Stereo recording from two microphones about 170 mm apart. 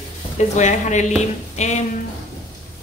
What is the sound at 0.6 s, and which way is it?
A woman's voice, 45° left (ahead or behind).